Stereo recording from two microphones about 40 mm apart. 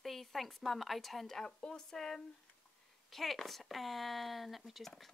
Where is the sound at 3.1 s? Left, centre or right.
Centre.